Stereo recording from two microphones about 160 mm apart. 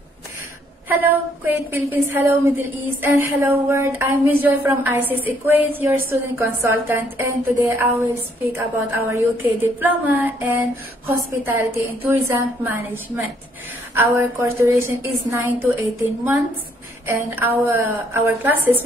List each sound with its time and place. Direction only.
1.4 s a woman's voice: 10° right (ahead or behind)
17.4 s a woman's voice: 15° right (ahead or behind)